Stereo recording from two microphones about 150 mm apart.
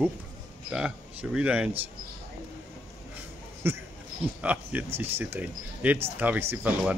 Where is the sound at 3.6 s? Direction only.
15° right (ahead or behind).